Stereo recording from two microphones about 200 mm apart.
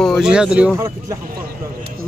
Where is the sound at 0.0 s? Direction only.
Centre (ahead or behind).